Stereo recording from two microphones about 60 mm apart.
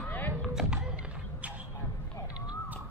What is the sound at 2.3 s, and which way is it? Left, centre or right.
Horse, centre.